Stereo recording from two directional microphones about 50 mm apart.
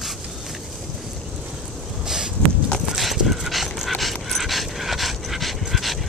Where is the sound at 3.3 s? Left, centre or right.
Centre.